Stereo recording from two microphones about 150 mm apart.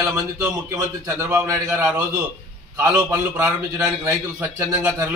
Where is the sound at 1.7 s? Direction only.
10° right (ahead or behind).